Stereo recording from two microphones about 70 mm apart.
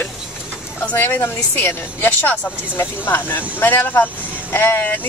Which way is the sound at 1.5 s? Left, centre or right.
Left.